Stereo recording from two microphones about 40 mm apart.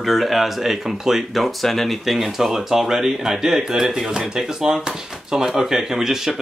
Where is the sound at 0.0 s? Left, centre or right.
Centre.